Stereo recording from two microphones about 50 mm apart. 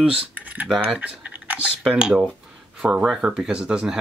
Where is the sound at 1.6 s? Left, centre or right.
Centre.